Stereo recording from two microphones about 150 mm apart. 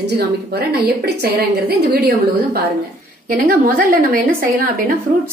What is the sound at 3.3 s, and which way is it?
A woman's voice, 70° right (ahead or behind).